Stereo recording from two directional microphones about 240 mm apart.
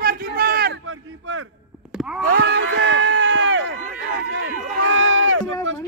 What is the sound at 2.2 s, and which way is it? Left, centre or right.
Run, right.